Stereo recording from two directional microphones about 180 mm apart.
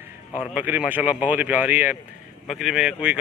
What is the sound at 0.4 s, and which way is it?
A man's voice, 10° right (ahead or behind).